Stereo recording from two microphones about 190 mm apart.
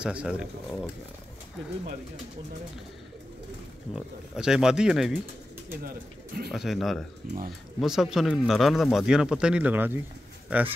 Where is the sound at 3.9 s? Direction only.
5° right (ahead or behind).